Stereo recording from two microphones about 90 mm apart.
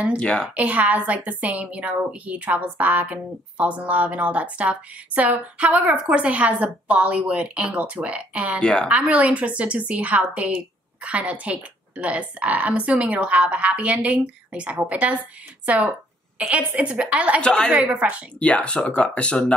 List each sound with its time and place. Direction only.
0.2 s speech: 10° left (ahead or behind)
0.6 s a woman's voice: 15° right (ahead or behind)
8.5 s speech: 10° left (ahead or behind)
8.8 s a woman's voice: 15° right (ahead or behind)
17.4 s speech: 10° left (ahead or behind)
17.7 s a woman's voice: 20° right (ahead or behind)
18.4 s speech: 10° left (ahead or behind)